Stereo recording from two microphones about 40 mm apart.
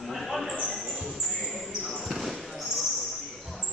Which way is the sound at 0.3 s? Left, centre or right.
Centre.